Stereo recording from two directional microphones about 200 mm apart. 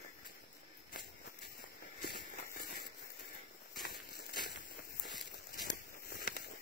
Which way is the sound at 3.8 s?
50° left (ahead or behind).